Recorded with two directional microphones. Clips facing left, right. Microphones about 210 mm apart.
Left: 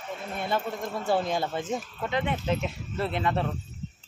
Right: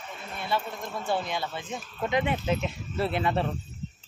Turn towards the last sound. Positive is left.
turn(degrees=-5)  # may be behind; listen again after turning